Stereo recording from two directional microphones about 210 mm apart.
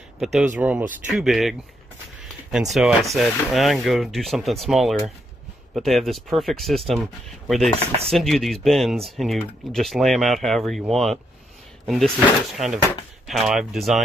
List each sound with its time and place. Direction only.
0.2 s speech: 5° right (ahead or behind)
2.7 s speech: centre (ahead or behind)